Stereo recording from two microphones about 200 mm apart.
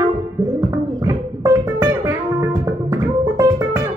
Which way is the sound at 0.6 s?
20° right (ahead or behind).